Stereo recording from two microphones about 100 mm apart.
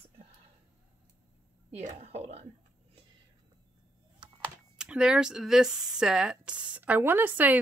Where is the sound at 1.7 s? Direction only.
90° right.